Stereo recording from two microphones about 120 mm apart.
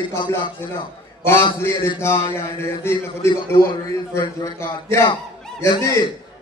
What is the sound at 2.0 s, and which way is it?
A man's voice, 20° left (ahead or behind).